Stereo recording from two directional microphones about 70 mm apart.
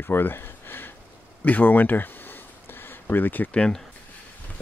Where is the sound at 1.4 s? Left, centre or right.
Left.